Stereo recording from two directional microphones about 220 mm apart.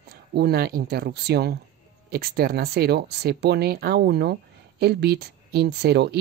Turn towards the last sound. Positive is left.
turn(degrees=-50)  # may be behind; listen again after turning